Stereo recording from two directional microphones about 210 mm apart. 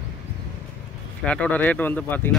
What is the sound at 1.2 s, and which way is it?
Speech, 5° left (ahead or behind).